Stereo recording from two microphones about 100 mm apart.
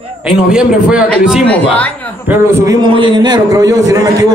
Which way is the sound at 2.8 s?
55° right (ahead or behind).